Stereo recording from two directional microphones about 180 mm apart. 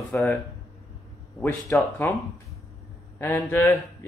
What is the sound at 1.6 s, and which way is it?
Speech, 15° left (ahead or behind).